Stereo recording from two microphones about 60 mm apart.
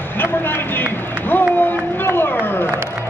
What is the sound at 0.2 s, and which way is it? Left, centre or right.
Run, left.